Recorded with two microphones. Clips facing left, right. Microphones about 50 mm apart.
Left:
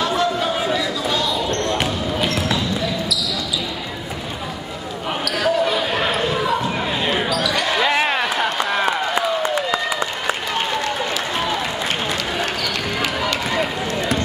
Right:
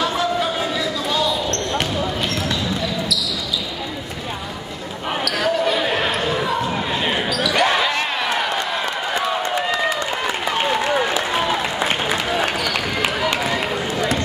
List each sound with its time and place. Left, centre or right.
0.0 s a sound: centre
1.5 s basketball bounce: centre
5.2 s basketball bounce: centre
7.8 s basketball bounce: centre
9.7 s applause: centre
10.7 s applause: centre
13.4 s run: centre